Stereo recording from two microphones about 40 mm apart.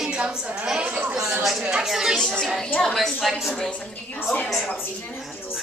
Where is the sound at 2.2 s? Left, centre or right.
Centre.